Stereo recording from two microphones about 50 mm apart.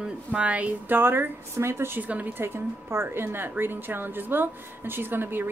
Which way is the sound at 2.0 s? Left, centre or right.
Right.